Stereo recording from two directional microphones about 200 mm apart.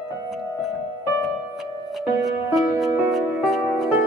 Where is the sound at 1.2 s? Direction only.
Centre (ahead or behind).